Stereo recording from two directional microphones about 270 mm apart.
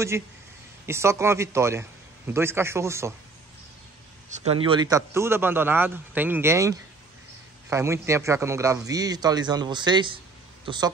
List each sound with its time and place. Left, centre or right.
0.8 s a man's voice: centre
4.3 s a man's voice: right